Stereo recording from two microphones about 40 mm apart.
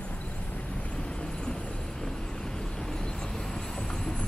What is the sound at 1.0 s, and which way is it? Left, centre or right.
Vehicle, centre.